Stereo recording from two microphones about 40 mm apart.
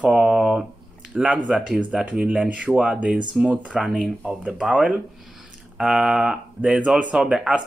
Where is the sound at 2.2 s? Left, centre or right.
Right.